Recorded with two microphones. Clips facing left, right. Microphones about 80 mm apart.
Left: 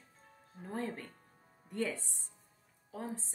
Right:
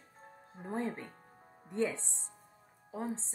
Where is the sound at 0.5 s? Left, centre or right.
Right.